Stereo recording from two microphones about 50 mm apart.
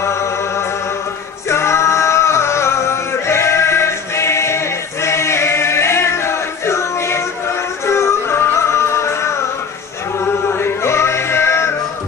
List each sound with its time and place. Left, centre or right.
0.0 s music: left
10.5 s music: left